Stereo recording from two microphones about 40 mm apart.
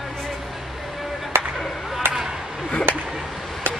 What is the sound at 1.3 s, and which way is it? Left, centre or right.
Chop, right.